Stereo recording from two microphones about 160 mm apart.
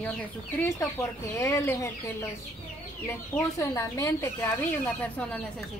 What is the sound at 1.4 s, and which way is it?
Speech, 15° left (ahead or behind).